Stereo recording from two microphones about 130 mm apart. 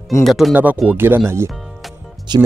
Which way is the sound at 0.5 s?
10° right (ahead or behind).